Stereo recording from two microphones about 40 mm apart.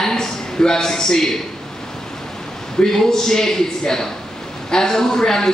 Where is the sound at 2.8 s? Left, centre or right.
Centre.